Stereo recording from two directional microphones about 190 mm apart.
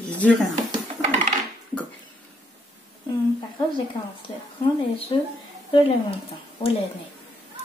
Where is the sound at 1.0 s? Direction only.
30° right (ahead or behind).